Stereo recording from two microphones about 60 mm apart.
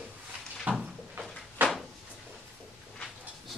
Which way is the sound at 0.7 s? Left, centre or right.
Right.